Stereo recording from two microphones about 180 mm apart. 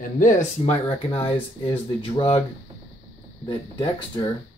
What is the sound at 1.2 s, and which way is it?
Speech, 30° left (ahead or behind).